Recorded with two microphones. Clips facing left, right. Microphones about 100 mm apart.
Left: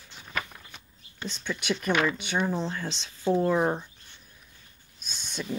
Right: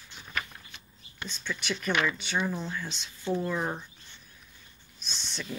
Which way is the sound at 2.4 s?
25° left (ahead or behind).